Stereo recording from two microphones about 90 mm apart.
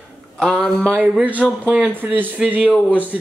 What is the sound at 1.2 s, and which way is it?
Speech, 15° right (ahead or behind).